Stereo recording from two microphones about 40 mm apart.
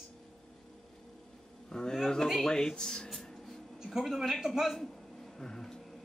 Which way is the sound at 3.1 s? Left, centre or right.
Centre.